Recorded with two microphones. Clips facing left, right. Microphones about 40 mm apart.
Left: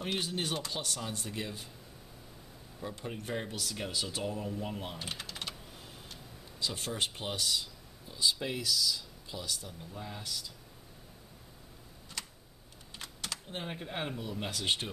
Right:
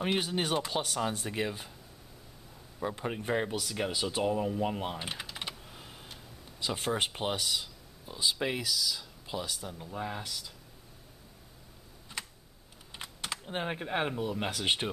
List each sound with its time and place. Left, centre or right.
0.0 s speech: right
2.8 s speech: right
5.8 s tick-tock: centre
6.6 s speech: right
9.3 s speech: right
9.6 s speech: centre
9.8 s speech: right
12.2 s computer keyboard: right
12.9 s speech: centre